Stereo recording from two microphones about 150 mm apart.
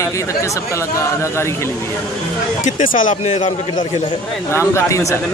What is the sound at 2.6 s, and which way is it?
Speech, 65° left (ahead or behind).